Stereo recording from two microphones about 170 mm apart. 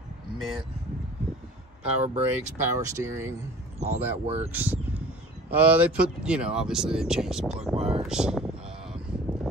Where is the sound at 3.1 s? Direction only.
15° right (ahead or behind).